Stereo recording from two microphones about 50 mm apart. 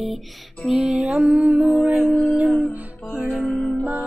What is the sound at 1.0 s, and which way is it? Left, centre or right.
Music, right.